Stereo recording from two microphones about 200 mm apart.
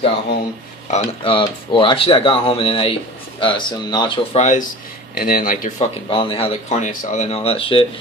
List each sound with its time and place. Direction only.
0.8 s speech: 30° left (ahead or behind)
5.1 s speech: 45° left (ahead or behind)
6.0 s speech: 25° left (ahead or behind)